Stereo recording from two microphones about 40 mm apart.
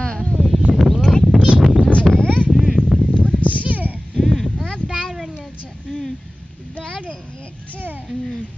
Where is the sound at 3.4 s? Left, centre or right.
Right.